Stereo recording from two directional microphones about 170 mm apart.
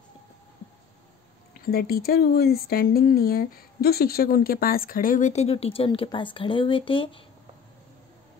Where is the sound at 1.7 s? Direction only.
65° left (ahead or behind); by 7.2 s 30° left (ahead or behind).